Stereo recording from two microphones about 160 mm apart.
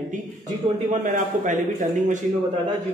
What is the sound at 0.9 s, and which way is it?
Speech, 50° right (ahead or behind).